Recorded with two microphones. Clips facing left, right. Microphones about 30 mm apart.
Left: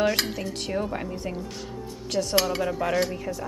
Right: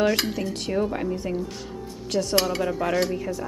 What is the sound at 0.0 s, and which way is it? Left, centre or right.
Speech, centre.